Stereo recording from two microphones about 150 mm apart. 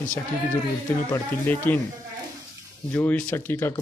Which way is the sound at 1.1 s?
15° left (ahead or behind).